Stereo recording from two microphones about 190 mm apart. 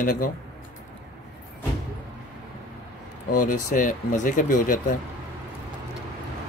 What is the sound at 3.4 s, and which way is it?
Speech, 45° left (ahead or behind).